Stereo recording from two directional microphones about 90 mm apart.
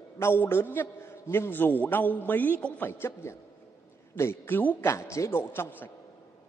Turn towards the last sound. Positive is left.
turn(degrees=25)  # may be behind; listen again after turning